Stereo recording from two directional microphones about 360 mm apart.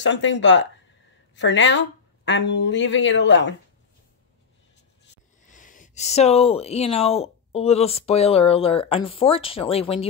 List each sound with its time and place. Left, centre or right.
0.0 s speech: left
5.4 s speech: left